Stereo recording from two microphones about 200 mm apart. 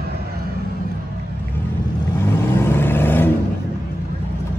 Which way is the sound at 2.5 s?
10° left (ahead or behind).